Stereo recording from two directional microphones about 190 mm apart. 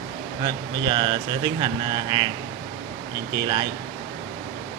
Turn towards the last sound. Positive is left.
turn(degrees=-25)  # may be behind; listen again after turning